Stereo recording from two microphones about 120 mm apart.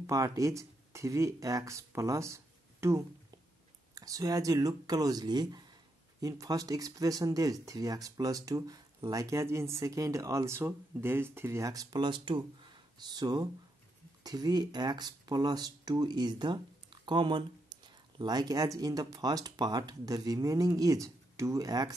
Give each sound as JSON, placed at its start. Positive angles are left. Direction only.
{"t": 0.0, "sound": "speech", "side_deg": -30}